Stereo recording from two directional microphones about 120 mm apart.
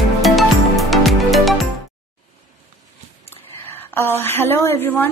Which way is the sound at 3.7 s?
20° left (ahead or behind).